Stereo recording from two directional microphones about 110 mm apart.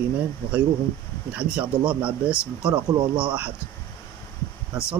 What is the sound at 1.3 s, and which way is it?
Speech, 10° right (ahead or behind).